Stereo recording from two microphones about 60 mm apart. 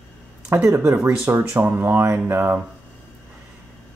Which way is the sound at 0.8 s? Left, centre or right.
Right.